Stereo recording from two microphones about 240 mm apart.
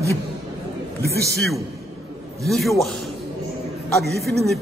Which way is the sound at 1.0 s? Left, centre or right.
Right.